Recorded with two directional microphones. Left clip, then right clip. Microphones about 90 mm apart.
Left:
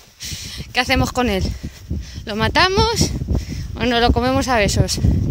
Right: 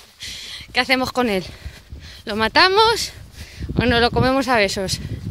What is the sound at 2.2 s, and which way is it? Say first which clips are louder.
Speech: right 1 dB; 35° right (ahead or behind).